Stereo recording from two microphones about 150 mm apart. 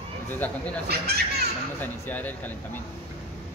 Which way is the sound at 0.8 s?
90° right.